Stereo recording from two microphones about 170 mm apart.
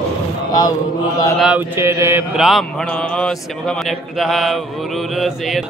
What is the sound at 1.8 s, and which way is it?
Mantra, 15° right (ahead or behind).